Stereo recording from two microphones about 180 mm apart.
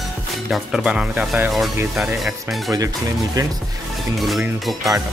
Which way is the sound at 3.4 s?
20° right (ahead or behind).